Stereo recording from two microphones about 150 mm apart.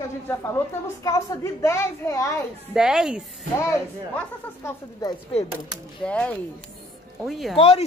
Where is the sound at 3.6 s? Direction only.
15° left (ahead or behind).